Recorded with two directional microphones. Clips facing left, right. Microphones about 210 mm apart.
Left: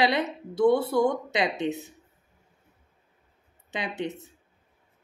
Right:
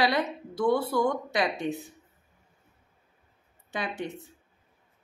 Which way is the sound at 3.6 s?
20° left (ahead or behind).